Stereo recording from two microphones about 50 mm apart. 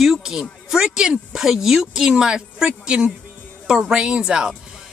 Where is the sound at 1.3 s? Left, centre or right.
Centre.